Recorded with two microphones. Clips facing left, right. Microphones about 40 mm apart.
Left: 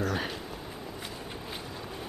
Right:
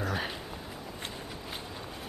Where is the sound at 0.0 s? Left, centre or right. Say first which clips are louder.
Left 2 dB; centre.